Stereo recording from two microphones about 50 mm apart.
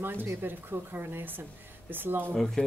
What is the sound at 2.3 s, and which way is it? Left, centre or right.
Speech, centre.